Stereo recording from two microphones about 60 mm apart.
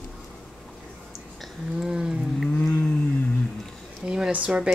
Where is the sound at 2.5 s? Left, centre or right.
Left.